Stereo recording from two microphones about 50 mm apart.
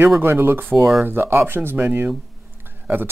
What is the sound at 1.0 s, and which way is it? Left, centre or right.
Speech, right.